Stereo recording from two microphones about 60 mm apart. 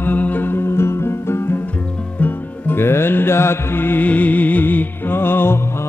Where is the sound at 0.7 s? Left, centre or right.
Left.